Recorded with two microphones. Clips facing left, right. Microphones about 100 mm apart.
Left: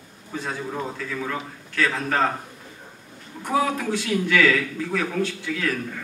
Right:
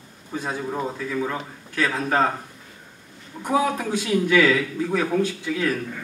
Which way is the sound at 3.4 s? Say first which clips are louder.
Right 1 dB; 20° right (ahead or behind).